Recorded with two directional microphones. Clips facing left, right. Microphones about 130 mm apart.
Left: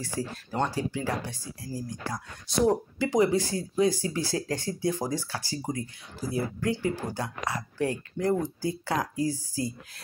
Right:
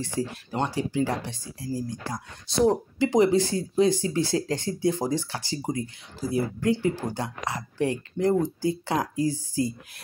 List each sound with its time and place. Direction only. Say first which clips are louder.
0.0 s speech: right 4 dB; 20° right (ahead or behind)